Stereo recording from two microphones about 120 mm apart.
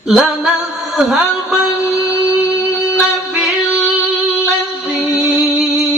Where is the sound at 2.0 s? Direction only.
5° right (ahead or behind).